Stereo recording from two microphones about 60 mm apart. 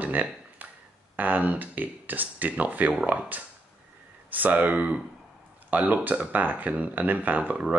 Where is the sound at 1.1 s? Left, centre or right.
Right.